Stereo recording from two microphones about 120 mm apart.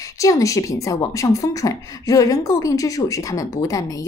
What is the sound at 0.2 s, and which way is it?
A woman's voice, 25° left (ahead or behind).